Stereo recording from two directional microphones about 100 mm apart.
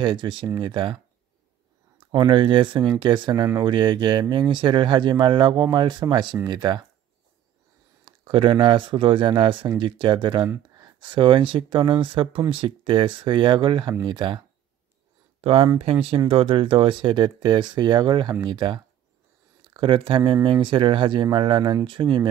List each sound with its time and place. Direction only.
0.0 s speech: 50° right (ahead or behind)
2.0 s speech: 50° right (ahead or behind)
8.0 s speech: 55° right (ahead or behind)
15.4 s speech: 80° right; by 22.1 s 45° right (ahead or behind)